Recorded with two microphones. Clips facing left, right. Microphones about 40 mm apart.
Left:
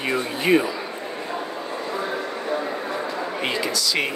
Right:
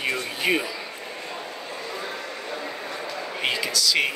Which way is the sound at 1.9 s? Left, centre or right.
Centre.